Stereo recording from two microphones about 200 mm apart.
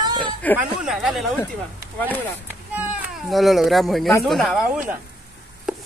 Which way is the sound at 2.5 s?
10° right (ahead or behind).